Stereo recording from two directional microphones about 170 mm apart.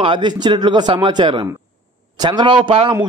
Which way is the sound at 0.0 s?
30° right (ahead or behind).